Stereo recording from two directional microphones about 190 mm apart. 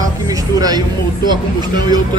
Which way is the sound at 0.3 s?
20° right (ahead or behind).